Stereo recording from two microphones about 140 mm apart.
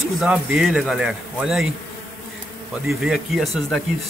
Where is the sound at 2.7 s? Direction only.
5° right (ahead or behind).